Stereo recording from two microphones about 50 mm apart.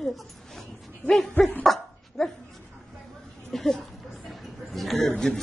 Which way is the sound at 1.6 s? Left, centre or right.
Centre.